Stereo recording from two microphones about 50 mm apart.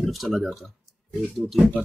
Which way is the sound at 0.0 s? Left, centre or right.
Centre.